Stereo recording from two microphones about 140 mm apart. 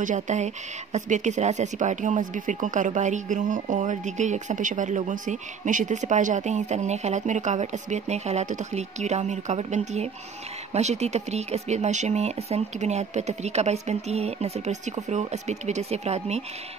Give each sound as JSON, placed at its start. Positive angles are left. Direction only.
{"t": 0.0, "sound": "speech", "side_deg": -60}